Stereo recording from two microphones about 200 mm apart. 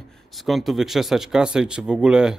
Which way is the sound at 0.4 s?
Centre (ahead or behind).